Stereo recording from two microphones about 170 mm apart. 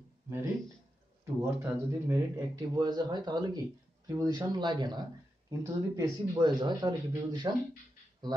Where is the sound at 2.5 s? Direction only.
25° right (ahead or behind).